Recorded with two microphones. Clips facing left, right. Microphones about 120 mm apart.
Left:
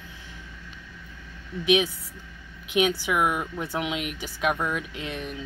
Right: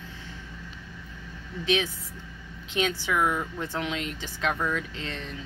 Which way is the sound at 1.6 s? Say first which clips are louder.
Left 4 dB; 15° left (ahead or behind).